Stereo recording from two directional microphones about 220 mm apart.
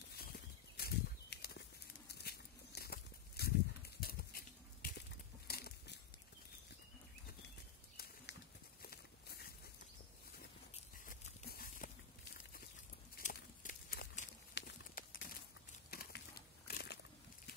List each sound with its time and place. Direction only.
0.1 s a sound: 45° left (ahead or behind)
8.8 s walk: 45° left (ahead or behind)
10.7 s biting: 30° left (ahead or behind)
11.4 s horse: 40° left (ahead or behind)
13.1 s crumpling: 40° left (ahead or behind)
14.5 s horse: 40° left (ahead or behind)
15.9 s a sound: 45° left (ahead or behind)